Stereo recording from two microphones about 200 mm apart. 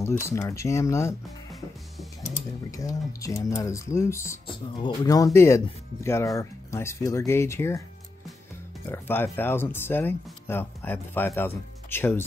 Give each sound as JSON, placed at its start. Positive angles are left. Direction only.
{"t": 0.2, "sound": "speech", "side_deg": 15}
{"t": 2.7, "sound": "speech", "side_deg": 15}
{"t": 8.8, "sound": "speech", "side_deg": 10}